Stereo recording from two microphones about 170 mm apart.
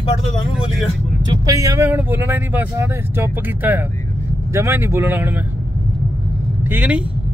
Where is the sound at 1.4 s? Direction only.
20° right (ahead or behind).